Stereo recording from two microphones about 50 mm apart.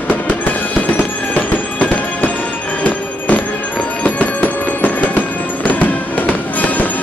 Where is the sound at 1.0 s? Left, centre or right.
Left.